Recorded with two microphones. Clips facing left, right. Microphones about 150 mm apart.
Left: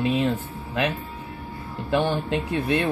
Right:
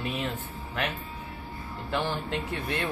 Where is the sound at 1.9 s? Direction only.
15° left (ahead or behind).